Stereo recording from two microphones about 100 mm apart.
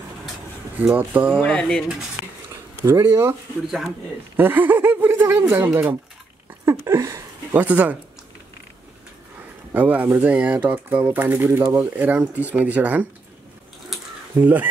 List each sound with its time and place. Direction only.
0.7 s speech: 15° right (ahead or behind)
1.4 s speech: 10° left (ahead or behind)
2.5 s speech: 25° right (ahead or behind)
3.6 s speech: centre (ahead or behind)
4.4 s speech: 20° right (ahead or behind)
7.5 s speech: 15° right (ahead or behind)
9.8 s speech: 15° right (ahead or behind)
14.4 s speech: 15° right (ahead or behind)